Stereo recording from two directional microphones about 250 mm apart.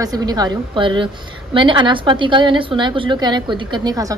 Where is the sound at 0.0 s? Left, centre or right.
Centre.